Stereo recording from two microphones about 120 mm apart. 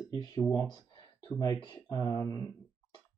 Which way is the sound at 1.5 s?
30° left (ahead or behind).